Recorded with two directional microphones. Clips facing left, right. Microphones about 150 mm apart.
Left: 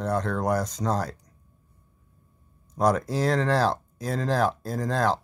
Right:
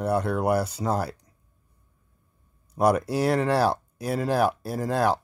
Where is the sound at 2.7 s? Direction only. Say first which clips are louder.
Right 2 dB; 10° right (ahead or behind).